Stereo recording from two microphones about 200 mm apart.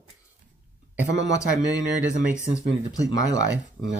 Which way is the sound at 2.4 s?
15° left (ahead or behind).